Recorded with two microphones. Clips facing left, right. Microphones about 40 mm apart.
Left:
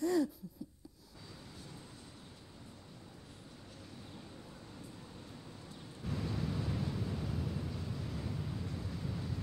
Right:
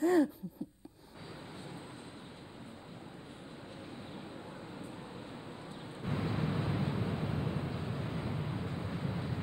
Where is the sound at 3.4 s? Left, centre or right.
Right.